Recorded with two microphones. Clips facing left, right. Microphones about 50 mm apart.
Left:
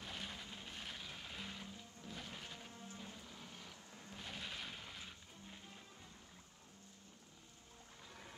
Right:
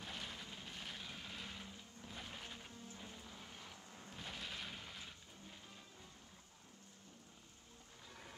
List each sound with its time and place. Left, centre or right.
0.0 s vehicle: centre
4.2 s music: centre
8.0 s boat: centre